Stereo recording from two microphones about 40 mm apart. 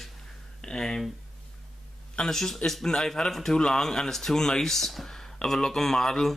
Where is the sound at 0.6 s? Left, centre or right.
Centre.